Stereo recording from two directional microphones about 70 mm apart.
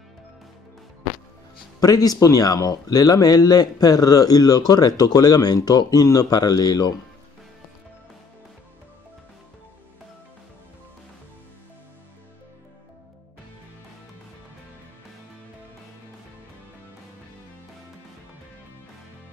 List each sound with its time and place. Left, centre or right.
1.8 s speech: left